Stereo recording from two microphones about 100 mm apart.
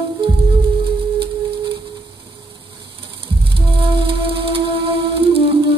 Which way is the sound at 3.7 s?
55° right (ahead or behind).